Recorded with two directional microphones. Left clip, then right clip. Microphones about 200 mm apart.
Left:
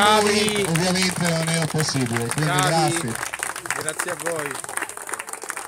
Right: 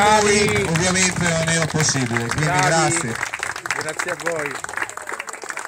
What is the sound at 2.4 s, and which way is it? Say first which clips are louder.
Speech: right 3 dB; centre (ahead or behind).